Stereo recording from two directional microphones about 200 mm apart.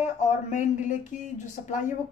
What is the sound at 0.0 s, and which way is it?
Speech, 40° left (ahead or behind).